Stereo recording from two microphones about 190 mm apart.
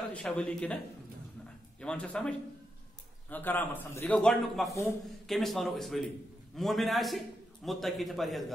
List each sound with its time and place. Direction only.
0.1 s a man's voice: 5° left (ahead or behind)
1.8 s a man's voice: 5° left (ahead or behind)